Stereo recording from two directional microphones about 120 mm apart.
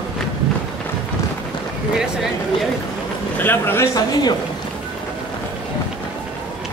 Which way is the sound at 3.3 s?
15° left (ahead or behind).